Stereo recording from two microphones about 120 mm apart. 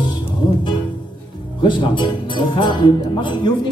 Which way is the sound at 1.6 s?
40° left (ahead or behind).